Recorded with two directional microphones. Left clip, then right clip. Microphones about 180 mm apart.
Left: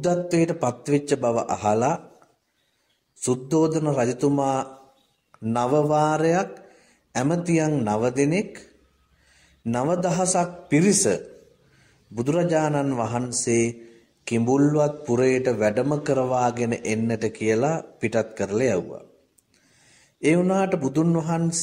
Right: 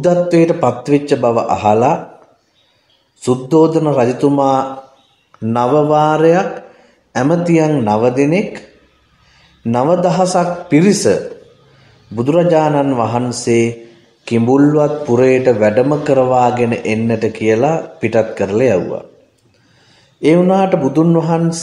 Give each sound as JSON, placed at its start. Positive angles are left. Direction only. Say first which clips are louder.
{"t": 0.0, "sound": "speech", "louder": "right 11 dB", "side_deg": 30}
{"t": 3.2, "sound": "speech", "louder": "right 11 dB", "side_deg": 30}
{"t": 12.2, "sound": "speech", "louder": "right 11 dB", "side_deg": 30}
{"t": 20.2, "sound": "speech", "louder": "right 10 dB", "side_deg": 35}